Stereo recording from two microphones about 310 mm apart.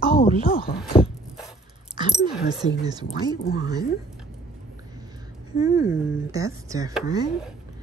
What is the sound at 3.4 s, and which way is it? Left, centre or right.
Speech, left.